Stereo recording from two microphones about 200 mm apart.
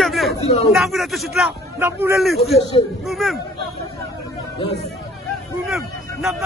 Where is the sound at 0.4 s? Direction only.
30° left (ahead or behind).